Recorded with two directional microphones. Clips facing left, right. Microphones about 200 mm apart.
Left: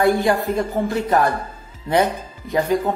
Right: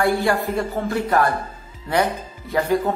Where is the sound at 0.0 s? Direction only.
20° left (ahead or behind).